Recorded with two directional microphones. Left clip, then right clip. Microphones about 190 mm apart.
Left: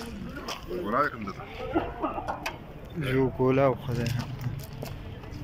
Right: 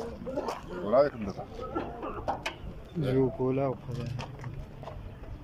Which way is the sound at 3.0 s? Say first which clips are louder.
Left 1 dB; 25° right (ahead or behind).